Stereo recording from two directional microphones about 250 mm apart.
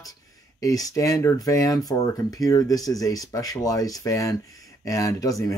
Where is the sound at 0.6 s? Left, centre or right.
Centre.